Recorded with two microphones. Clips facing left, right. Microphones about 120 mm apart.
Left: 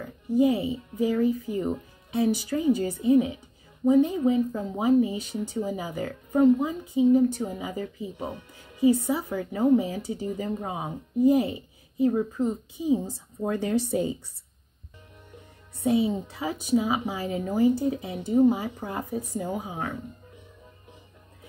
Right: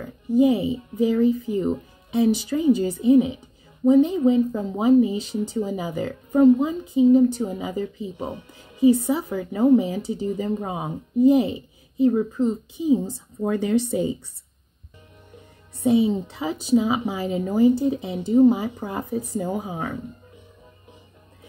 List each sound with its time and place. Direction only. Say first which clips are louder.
0.4 s speech: right 4 dB; 20° right (ahead or behind)
13.5 s speech: right 4 dB; 20° right (ahead or behind)
15.8 s speech: right 5 dB; 20° right (ahead or behind)